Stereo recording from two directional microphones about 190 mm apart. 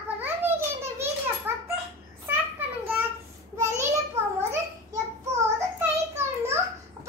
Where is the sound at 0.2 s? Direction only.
10° right (ahead or behind).